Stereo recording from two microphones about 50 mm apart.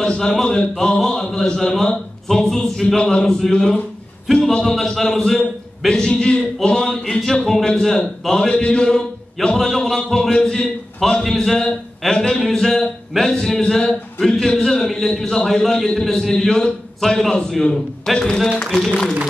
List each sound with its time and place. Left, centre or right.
0.0 s a man's voice: centre